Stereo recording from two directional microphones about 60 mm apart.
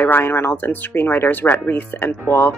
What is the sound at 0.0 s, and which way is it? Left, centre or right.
Speech, left.